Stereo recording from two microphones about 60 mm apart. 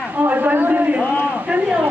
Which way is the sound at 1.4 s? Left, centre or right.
Right.